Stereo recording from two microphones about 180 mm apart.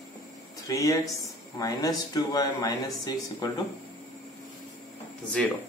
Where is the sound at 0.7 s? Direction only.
20° left (ahead or behind).